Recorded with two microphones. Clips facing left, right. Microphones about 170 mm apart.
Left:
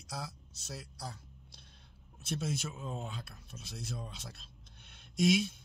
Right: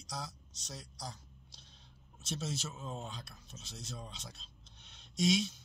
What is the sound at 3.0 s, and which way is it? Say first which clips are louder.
Speech: left 2 dB; 55° left (ahead or behind).